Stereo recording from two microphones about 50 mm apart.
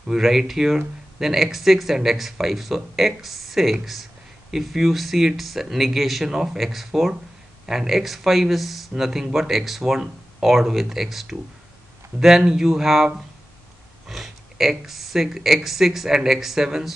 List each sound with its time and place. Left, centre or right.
0.0 s speech: centre